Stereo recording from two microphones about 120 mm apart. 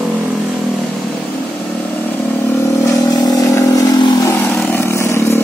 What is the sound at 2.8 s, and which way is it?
Vehicle, 30° left (ahead or behind).